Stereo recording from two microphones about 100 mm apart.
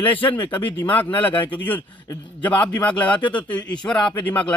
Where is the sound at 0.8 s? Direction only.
15° left (ahead or behind).